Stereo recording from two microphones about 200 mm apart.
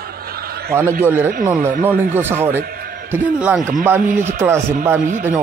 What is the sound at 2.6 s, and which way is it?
Music, 50° right (ahead or behind).